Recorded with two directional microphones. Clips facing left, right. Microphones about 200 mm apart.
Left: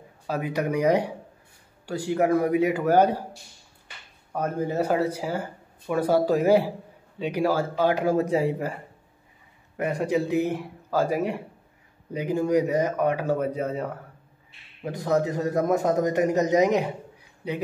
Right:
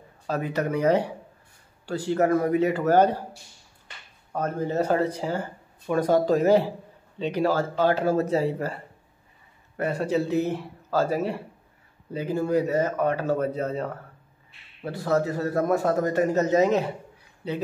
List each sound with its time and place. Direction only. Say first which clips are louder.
0.3 s a man's voice: even; 10° left (ahead or behind)